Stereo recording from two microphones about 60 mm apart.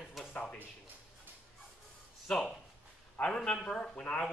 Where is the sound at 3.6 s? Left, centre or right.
Centre.